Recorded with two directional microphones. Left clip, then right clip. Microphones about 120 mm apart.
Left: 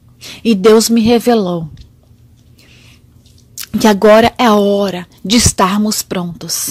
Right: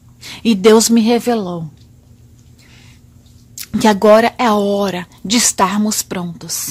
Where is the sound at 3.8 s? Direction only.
25° left (ahead or behind).